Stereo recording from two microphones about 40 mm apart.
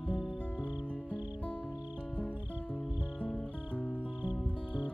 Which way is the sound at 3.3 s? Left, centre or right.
Left.